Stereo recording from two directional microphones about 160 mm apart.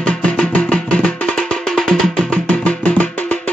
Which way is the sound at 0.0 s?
10° left (ahead or behind).